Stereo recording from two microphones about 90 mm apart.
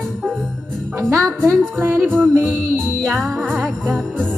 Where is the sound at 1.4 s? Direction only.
30° right (ahead or behind).